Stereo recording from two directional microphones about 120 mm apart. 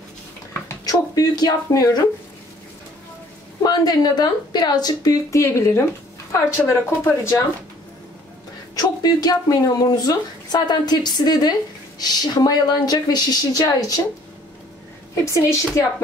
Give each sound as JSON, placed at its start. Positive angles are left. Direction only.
{"t": 0.8, "sound": "speech", "side_deg": 30}
{"t": 3.6, "sound": "speech", "side_deg": 35}
{"t": 8.7, "sound": "speech", "side_deg": 30}
{"t": 15.1, "sound": "speech", "side_deg": 25}